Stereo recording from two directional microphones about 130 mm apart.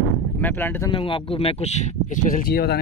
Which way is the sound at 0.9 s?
40° left (ahead or behind).